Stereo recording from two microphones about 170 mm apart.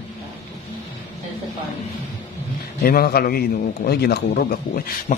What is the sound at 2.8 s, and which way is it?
A man's voice, 60° left (ahead or behind).